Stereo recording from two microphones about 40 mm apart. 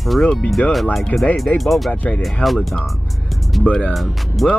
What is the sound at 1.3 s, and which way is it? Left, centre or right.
Speech, centre.